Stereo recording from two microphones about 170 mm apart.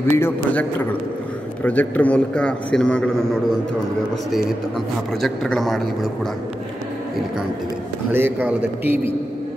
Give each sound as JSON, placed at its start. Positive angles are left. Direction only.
{"t": 0.0, "sound": "a man's voice", "side_deg": 15}
{"t": 5.2, "sound": "a man's voice", "side_deg": 0}
{"t": 8.1, "sound": "a man's voice", "side_deg": -10}